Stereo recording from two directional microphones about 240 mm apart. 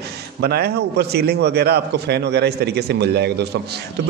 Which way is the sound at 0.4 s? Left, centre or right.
Right.